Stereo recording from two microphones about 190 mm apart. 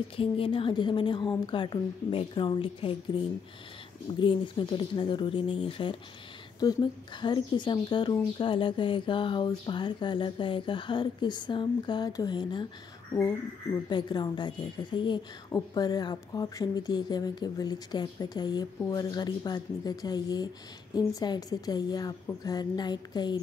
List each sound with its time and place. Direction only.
0.1 s speech: 30° left (ahead or behind)
13.8 s speech: 25° left (ahead or behind)